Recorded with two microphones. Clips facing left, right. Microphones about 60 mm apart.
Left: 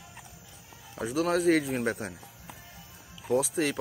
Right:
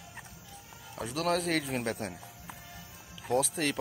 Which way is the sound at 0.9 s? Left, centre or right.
Centre.